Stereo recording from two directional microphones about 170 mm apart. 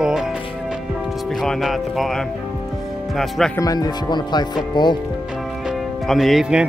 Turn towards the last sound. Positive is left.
turn(degrees=0)  # may be behind; listen again after turning